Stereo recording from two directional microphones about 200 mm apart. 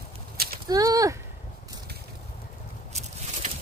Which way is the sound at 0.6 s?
20° right (ahead or behind).